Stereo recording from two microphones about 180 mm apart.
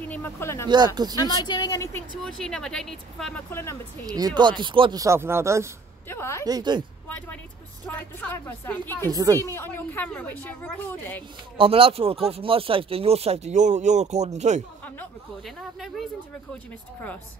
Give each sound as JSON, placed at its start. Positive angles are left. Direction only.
{"t": 0.1, "sound": "speech", "side_deg": 15}
{"t": 0.7, "sound": "speech", "side_deg": -25}
{"t": 1.1, "sound": "speech", "side_deg": 25}
{"t": 2.2, "sound": "speech", "side_deg": 5}
{"t": 4.0, "sound": "speech", "side_deg": -20}
{"t": 5.0, "sound": "speech", "side_deg": -15}
{"t": 6.0, "sound": "a woman's voice", "side_deg": 15}
{"t": 6.4, "sound": "speech", "side_deg": -20}
{"t": 7.1, "sound": "a woman's voice", "side_deg": 10}
{"t": 9.1, "sound": "speech", "side_deg": -20}
{"t": 9.4, "sound": "a woman's voice", "side_deg": 15}
{"t": 11.5, "sound": "speech", "side_deg": -30}
{"t": 15.0, "sound": "speech", "side_deg": 0}